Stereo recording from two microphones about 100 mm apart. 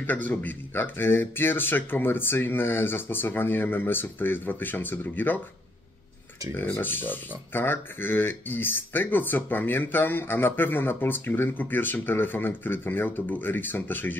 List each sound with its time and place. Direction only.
0.0 s speech: 15° left (ahead or behind)
6.8 s speech: 20° left (ahead or behind)